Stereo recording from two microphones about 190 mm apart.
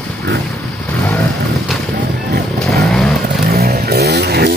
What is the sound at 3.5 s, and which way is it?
Chainsaw, 55° right (ahead or behind).